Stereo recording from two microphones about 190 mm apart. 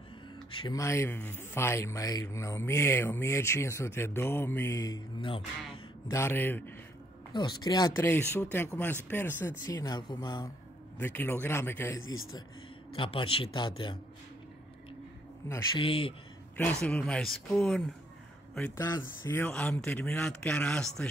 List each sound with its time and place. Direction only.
0.6 s speech: 20° left (ahead or behind)
7.3 s speech: 20° left (ahead or behind)
11.0 s speech: 10° left (ahead or behind)
12.0 s speech: 90° left
12.9 s speech: 30° left (ahead or behind)
15.7 s speech: 30° left (ahead or behind)
16.8 s speech: 5° left (ahead or behind)
18.8 s speech: 15° left (ahead or behind)